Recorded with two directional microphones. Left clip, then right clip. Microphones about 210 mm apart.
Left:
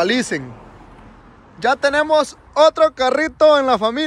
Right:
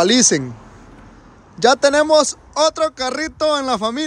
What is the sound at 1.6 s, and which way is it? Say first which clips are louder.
Speech: right 3 dB; 25° right (ahead or behind).